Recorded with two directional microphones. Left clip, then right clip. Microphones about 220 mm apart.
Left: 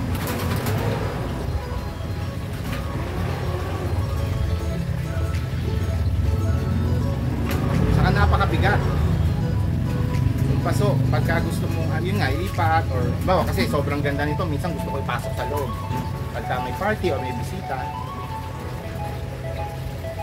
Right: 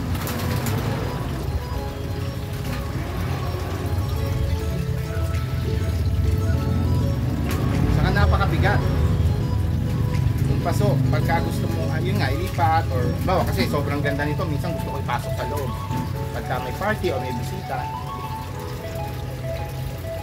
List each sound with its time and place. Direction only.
8.0 s vehicle: 10° left (ahead or behind)
10.7 s vehicle: centre (ahead or behind)
12.2 s music: centre (ahead or behind)
13.3 s speech: 5° right (ahead or behind)
16.4 s speech: centre (ahead or behind)